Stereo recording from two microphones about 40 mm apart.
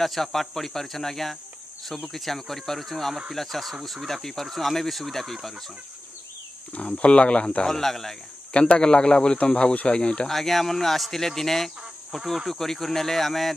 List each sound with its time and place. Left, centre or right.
0.0 s speech: centre
6.7 s speech: left
7.6 s speech: centre
8.5 s speech: left
10.2 s speech: centre